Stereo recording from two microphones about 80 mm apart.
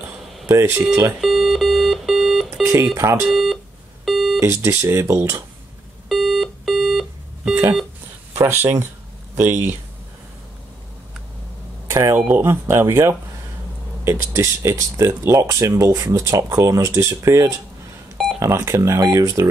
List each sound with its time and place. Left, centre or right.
0.5 s speech: right
1.2 s alarm clock: centre
2.6 s speech: right
3.3 s speech: centre
4.0 s beep: centre
4.4 s speech: right
6.0 s music: centre
8.3 s speech: right
11.9 s speech: right
12.2 s speech: right